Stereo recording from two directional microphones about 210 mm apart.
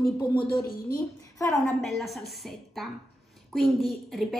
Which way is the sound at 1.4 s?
15° left (ahead or behind).